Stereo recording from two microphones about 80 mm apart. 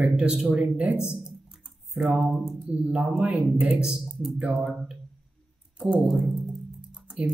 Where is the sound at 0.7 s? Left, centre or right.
Centre.